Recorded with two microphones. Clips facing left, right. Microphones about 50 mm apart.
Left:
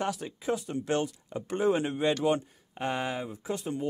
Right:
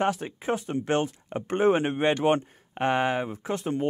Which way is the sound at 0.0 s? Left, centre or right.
Right.